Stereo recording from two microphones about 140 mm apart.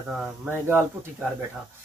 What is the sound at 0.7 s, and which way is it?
Speech, 15° right (ahead or behind).